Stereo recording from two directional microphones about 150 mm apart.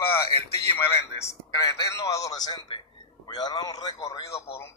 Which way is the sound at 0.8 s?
20° left (ahead or behind).